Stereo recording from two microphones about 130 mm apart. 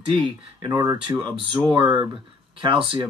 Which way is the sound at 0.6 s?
35° right (ahead or behind).